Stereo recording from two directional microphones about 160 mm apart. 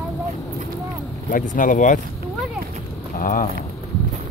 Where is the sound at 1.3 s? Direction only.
55° left (ahead or behind).